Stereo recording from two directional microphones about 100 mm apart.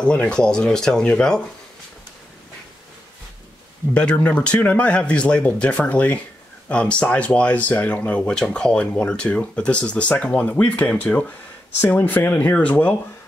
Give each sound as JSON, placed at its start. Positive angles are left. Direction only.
{"t": 0.0, "sound": "speech", "side_deg": 10}
{"t": 3.9, "sound": "speech", "side_deg": 10}